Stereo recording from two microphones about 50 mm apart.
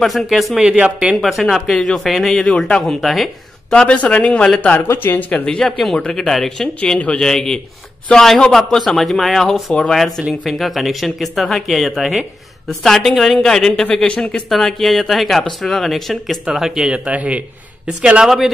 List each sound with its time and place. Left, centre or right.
0.0 s speech: centre
0.6 s speech: centre
1.1 s speech: centre
3.7 s speech: left
4.9 s speech: left
5.3 s speech: left
5.6 s speech: centre
14.0 s speech: left
14.5 s speech: centre
16.5 s speech: centre
16.9 s speech: right
18.2 s speech: centre